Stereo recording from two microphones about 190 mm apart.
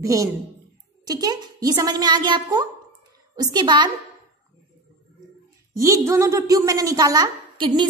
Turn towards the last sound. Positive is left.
turn(degrees=-25)  # may be behind; listen again after turning